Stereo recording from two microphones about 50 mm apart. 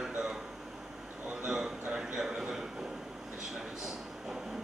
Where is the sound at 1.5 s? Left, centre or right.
Centre.